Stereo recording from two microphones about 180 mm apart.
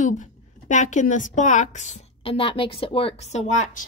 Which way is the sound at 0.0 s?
45° left (ahead or behind).